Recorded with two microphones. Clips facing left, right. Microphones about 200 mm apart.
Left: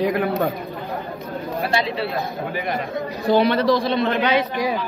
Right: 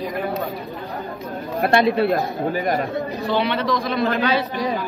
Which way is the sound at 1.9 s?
45° right (ahead or behind).